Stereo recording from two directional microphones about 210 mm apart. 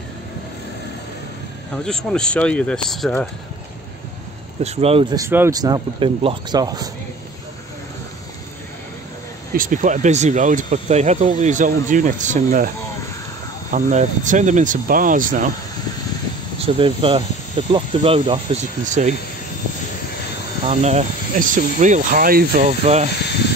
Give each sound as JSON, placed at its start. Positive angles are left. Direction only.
{"t": 1.9, "sound": "speech", "side_deg": 5}
{"t": 4.6, "sound": "speech", "side_deg": -30}
{"t": 5.1, "sound": "speech", "side_deg": -10}
{"t": 9.6, "sound": "speech", "side_deg": -40}
{"t": 13.7, "sound": "speech", "side_deg": -35}
{"t": 16.5, "sound": "speech", "side_deg": -25}
{"t": 20.6, "sound": "speech", "side_deg": -30}
{"t": 22.7, "sound": "speech", "side_deg": -30}